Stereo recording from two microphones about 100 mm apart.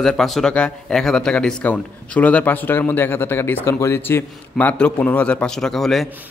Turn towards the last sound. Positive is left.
turn(degrees=0)  # may be behind; listen again after turning